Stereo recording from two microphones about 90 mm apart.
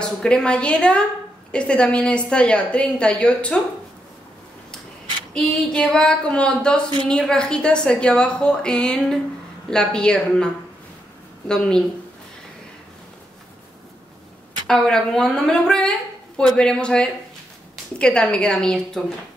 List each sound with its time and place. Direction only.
0.0 s a woman's voice: 10° left (ahead or behind)
5.3 s a woman's voice: 10° left (ahead or behind)
14.7 s a woman's voice: 5° left (ahead or behind)